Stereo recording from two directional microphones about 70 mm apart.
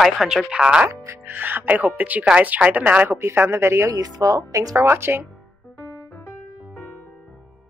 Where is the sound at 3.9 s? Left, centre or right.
Right.